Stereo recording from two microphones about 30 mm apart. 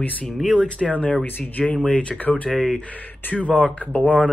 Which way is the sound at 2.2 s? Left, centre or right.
Left.